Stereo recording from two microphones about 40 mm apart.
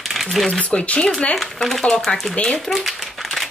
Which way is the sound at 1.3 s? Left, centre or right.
Centre.